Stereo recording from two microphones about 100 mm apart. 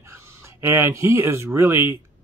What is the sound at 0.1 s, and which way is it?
Speech, 25° right (ahead or behind).